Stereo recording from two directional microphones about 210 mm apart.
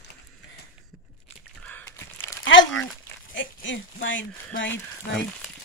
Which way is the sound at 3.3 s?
60° left (ahead or behind).